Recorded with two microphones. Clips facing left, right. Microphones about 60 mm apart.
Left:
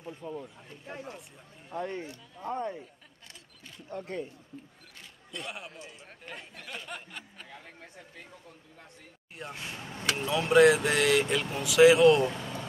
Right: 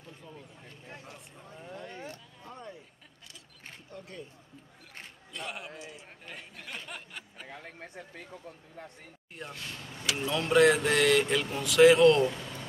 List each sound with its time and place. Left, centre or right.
0.2 s speech: left
1.7 s speech: left
3.9 s speech: left
5.3 s speech: centre
6.9 s a sound: centre
7.4 s speech: right
9.5 s speech: left
10.2 s speech: centre